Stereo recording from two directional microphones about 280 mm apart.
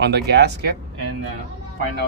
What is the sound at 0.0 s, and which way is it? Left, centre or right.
Speech, right.